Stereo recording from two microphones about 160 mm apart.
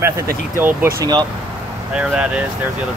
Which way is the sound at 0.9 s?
25° right (ahead or behind).